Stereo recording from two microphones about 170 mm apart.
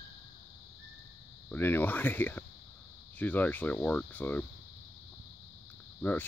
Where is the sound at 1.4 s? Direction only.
10° left (ahead or behind).